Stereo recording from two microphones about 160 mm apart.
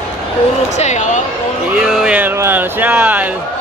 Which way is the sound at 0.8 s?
50° left (ahead or behind).